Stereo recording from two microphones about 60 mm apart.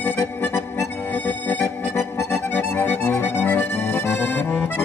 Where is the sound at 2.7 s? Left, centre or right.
Left.